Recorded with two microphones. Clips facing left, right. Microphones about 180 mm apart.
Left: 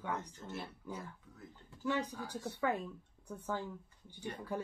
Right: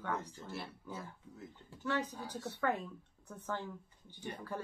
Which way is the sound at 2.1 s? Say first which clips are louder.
Left 1 dB; 15° right (ahead or behind).